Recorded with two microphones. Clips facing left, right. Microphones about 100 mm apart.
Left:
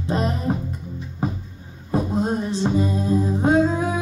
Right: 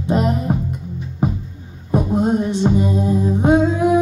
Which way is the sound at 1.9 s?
15° right (ahead or behind).